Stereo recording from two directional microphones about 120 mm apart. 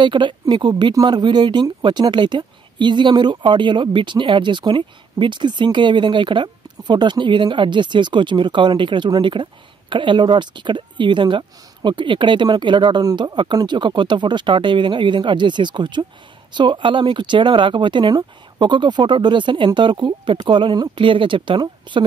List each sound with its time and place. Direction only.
0.0 s speech: 40° right (ahead or behind)